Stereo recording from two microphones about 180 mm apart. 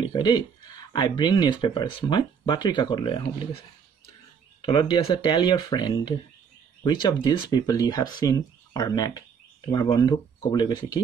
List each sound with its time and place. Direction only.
0.0 s speech: 25° left (ahead or behind)
4.6 s speech: 25° left (ahead or behind)